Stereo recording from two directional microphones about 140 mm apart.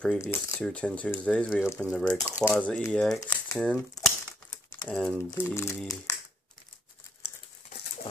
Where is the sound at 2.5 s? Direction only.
10° left (ahead or behind).